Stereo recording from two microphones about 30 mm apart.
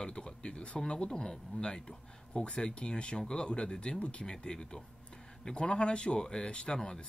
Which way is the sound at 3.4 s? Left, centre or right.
Left.